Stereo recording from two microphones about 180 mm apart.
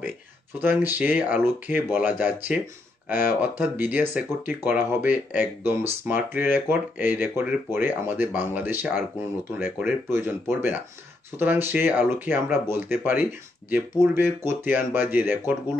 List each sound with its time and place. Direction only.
0.6 s speech: 10° right (ahead or behind)
11.3 s speech: 10° right (ahead or behind)